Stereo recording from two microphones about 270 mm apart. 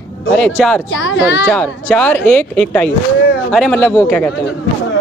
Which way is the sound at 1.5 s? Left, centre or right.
Centre.